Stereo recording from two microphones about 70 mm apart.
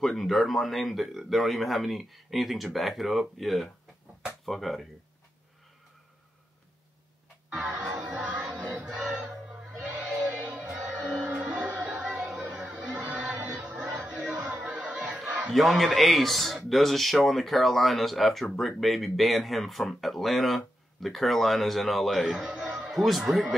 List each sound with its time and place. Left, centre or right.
0.2 s speech: centre
7.9 s music: centre
8.8 s music: centre
10.1 s music: right
10.7 s music: centre
15.0 s a sound: centre
15.4 s speech: centre